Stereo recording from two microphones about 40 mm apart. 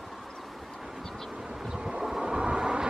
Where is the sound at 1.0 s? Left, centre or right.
Centre.